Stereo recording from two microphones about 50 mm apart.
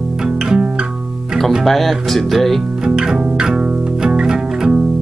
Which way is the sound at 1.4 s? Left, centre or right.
Centre.